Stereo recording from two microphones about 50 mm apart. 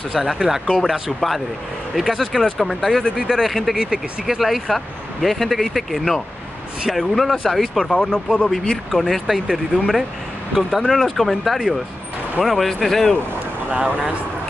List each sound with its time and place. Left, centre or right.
0.1 s speech: centre
2.0 s speech: centre
3.0 s speech: centre
3.8 s speech: centre
4.4 s speech: centre
8.9 s speech: centre
11.0 s speech: centre
13.7 s speech: right